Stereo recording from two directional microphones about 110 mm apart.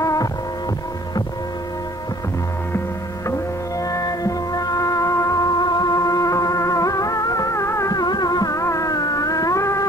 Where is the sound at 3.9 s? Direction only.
35° left (ahead or behind).